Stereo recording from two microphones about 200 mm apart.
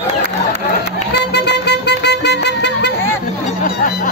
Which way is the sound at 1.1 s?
60° left (ahead or behind).